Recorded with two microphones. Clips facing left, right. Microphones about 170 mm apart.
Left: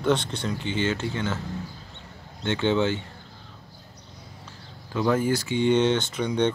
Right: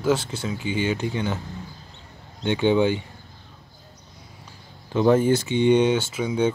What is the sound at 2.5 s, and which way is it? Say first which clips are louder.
Speech: right 4 dB; 15° right (ahead or behind).